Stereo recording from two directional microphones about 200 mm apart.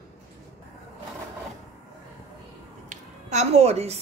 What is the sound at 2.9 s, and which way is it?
A woman's voice, 35° right (ahead or behind).